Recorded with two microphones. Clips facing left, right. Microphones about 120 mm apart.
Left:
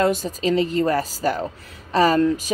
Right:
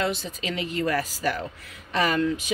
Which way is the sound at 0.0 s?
45° left (ahead or behind).